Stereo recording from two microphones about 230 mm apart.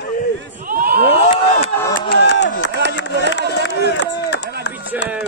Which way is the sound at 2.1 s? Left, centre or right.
Left.